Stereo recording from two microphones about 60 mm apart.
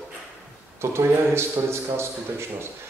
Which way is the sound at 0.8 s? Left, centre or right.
Right.